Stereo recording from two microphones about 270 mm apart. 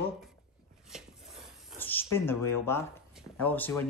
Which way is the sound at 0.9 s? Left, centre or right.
Centre.